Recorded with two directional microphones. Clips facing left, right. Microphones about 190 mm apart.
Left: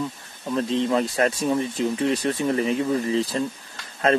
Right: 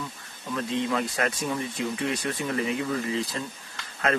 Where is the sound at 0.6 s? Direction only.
30° left (ahead or behind).